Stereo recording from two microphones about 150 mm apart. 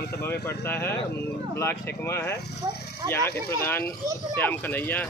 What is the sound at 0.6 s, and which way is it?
Speech, 15° left (ahead or behind).